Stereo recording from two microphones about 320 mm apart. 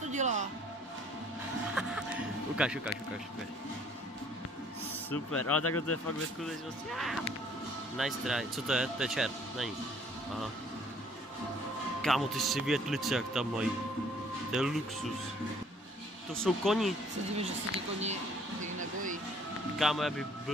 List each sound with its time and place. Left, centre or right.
0.0 s music: right
1.8 s music: centre
5.6 s speech: left
6.4 s speech: centre
12.0 s speech: centre
16.4 s speech: centre
17.4 s speech: centre
19.8 s speech: centre